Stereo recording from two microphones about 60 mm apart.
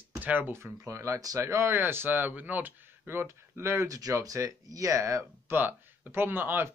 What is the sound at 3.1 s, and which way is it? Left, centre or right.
Speech, right.